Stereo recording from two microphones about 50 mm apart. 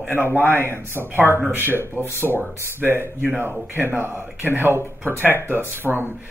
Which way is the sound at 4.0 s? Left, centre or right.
Right.